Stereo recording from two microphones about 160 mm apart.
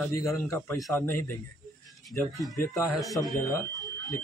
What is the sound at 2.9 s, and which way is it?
Speech, centre (ahead or behind).